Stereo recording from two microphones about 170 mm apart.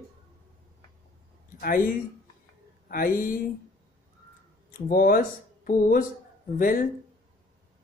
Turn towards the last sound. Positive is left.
turn(degrees=55)  # may be behind; listen again after turning